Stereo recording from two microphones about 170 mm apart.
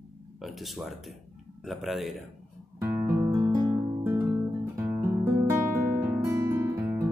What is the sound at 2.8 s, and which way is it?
Music, 15° right (ahead or behind).